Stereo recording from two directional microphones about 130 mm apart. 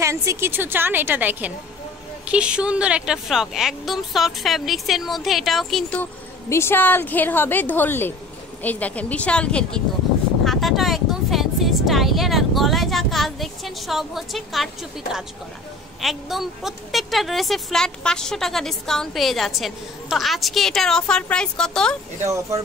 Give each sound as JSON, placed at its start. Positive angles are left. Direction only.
{"t": 0.0, "sound": "a woman's voice", "side_deg": -20}
{"t": 6.5, "sound": "a woman's voice", "side_deg": 20}
{"t": 10.4, "sound": "a sound", "side_deg": 0}
{"t": 16.0, "sound": "a woman's voice", "side_deg": 0}
{"t": 22.2, "sound": "speech", "side_deg": -25}